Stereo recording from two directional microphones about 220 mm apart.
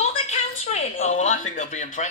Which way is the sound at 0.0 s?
30° left (ahead or behind).